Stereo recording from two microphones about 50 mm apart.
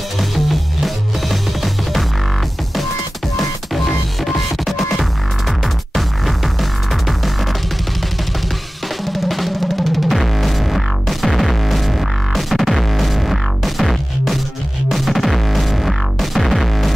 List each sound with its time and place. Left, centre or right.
0.2 s music: centre
3.3 s music: centre
9.0 s drum: centre
14.9 s music: centre